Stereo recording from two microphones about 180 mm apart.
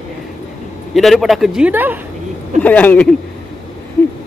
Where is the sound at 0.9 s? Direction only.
Centre (ahead or behind).